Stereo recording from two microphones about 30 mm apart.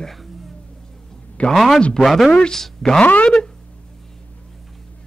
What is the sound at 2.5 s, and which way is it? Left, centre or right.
Speech, centre.